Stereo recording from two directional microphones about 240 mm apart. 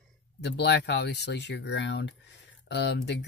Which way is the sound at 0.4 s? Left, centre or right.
Left.